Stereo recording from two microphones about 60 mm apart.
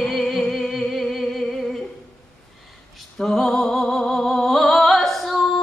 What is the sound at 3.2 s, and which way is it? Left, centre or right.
Music, centre.